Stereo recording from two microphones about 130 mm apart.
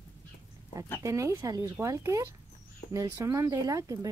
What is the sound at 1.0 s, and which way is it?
Speech, 25° right (ahead or behind).